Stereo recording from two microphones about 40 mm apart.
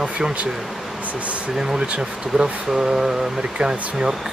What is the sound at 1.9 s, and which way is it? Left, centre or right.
Speech, right.